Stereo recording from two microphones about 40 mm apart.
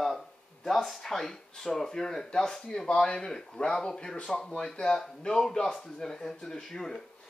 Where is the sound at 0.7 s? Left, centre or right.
Centre.